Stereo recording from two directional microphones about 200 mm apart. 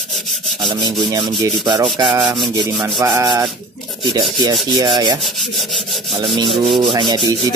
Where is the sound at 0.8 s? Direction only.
20° right (ahead or behind).